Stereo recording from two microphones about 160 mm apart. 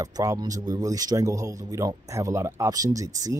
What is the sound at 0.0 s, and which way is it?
A man's voice, 20° right (ahead or behind).